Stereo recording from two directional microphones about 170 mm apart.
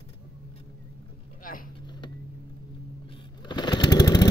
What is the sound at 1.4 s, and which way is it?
Vehicle, 55° left (ahead or behind).